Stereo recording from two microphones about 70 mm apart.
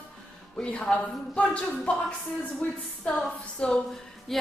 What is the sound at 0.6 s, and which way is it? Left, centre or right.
A man's voice, centre.